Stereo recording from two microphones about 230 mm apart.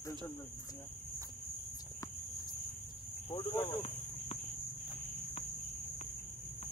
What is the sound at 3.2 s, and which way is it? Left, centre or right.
Speech, left.